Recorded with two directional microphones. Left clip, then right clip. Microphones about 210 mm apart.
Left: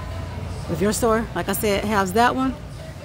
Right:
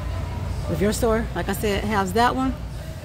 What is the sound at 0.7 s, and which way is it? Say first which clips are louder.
Speech: left 2 dB; 10° left (ahead or behind).